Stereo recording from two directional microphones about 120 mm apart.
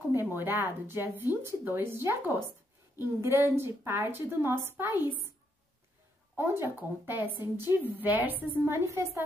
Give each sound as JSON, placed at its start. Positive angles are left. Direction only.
{"t": 0.1, "sound": "a woman's voice", "side_deg": -15}
{"t": 6.3, "sound": "a woman's voice", "side_deg": -20}